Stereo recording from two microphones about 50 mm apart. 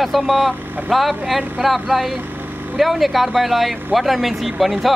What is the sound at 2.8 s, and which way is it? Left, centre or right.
A man's voice, centre.